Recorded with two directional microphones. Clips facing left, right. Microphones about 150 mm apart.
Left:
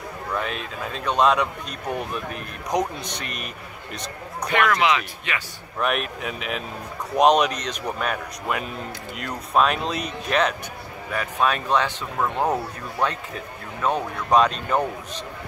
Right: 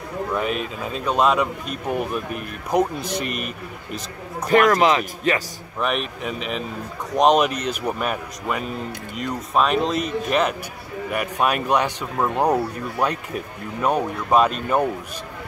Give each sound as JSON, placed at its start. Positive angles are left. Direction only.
{"t": 0.3, "sound": "speech", "side_deg": -5}
{"t": 4.5, "sound": "speech", "side_deg": -40}
{"t": 5.8, "sound": "speech", "side_deg": 0}
{"t": 11.1, "sound": "speech", "side_deg": -15}
{"t": 13.8, "sound": "speech", "side_deg": -10}